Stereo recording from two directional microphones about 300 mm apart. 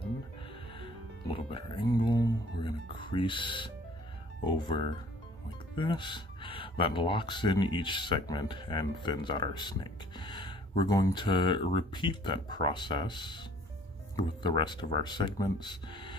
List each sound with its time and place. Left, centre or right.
1.3 s music: centre
4.5 s speech: centre